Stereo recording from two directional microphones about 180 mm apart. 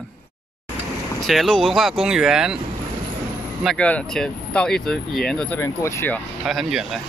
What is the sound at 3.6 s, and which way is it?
Speech, 5° left (ahead or behind).